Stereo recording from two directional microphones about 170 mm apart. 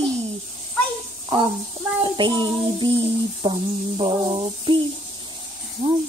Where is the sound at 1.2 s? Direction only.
30° right (ahead or behind).